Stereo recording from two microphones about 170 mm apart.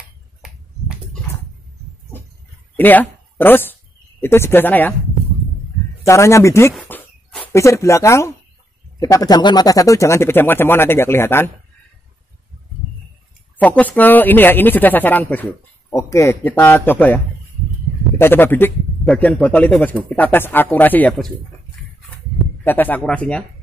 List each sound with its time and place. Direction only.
2.7 s speech: 10° left (ahead or behind)
6.0 s speech: 15° left (ahead or behind)
6.9 s a sound: 5° left (ahead or behind)
7.5 s speech: 15° left (ahead or behind)
13.6 s speech: 10° left (ahead or behind)
22.6 s speech: 10° left (ahead or behind)